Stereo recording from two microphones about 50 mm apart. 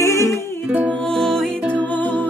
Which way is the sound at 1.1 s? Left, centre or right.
Centre.